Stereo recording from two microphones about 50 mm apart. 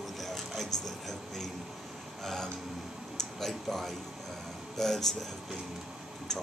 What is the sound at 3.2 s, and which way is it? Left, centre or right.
Speech, centre.